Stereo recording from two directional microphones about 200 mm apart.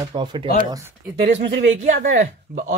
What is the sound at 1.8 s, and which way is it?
Speech, 40° right (ahead or behind).